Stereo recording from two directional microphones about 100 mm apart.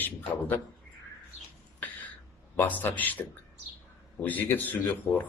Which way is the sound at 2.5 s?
15° left (ahead or behind).